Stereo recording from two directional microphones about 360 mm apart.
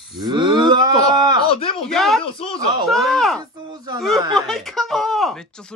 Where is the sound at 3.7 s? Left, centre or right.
Centre.